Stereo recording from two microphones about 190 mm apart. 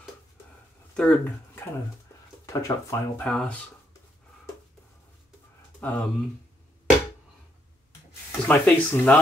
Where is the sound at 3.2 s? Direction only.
5° left (ahead or behind).